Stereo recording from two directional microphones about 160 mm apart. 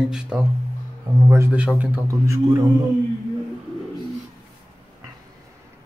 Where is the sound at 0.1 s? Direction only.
5° right (ahead or behind).